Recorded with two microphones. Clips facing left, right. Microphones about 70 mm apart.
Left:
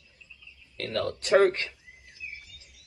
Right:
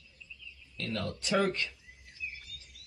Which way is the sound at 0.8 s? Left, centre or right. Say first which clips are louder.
Left 6 dB; left.